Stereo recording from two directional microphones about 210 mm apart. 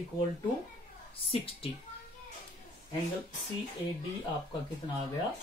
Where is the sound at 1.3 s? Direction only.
30° left (ahead or behind).